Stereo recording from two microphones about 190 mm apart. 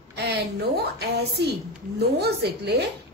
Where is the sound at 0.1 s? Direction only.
60° right (ahead or behind).